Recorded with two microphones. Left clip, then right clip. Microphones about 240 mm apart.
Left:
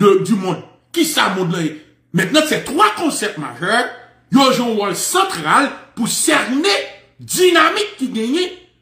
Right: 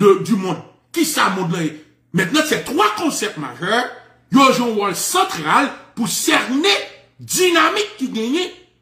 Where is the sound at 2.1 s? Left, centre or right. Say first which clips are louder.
Left 2 dB; centre.